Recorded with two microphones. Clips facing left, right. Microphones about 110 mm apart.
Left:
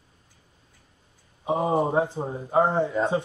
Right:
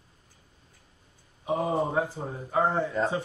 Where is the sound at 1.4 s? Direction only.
30° left (ahead or behind).